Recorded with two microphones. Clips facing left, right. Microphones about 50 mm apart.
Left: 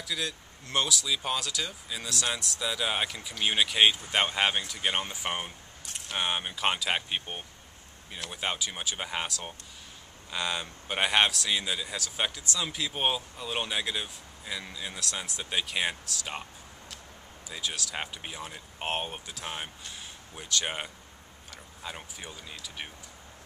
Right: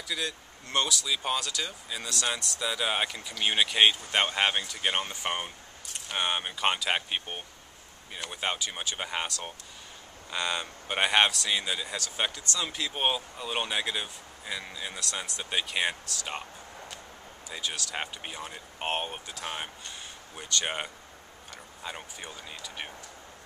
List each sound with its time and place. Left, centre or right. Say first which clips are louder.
0.1 s speech: right 1 dB; centre
17.5 s speech: even; centre